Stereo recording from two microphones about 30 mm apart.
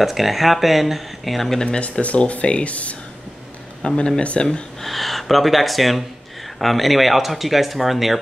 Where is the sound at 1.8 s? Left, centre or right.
Left.